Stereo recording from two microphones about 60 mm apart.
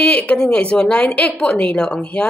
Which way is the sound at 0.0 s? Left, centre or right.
Left.